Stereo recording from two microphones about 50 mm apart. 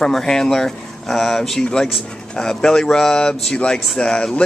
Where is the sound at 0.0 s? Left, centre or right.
Centre.